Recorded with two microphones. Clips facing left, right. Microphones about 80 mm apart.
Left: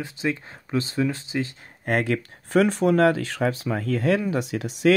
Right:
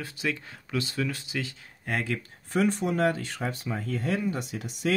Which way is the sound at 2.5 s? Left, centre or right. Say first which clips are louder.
Left 7 dB; left.